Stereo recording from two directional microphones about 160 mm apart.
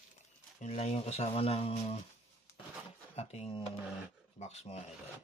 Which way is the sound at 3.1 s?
40° left (ahead or behind).